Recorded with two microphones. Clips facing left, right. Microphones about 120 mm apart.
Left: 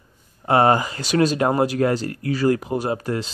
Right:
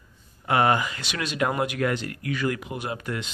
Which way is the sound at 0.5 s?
35° left (ahead or behind).